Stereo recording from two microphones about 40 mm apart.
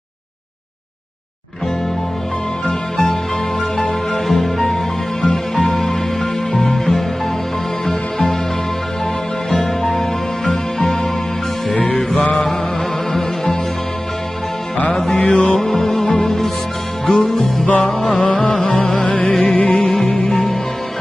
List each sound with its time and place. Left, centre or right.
2.6 s music: left
4.1 s music: centre
9.5 s music: centre
12.2 s music: left
13.1 s music: centre
15.1 s music: left
15.6 s music: centre
18.1 s music: left
19.9 s music: centre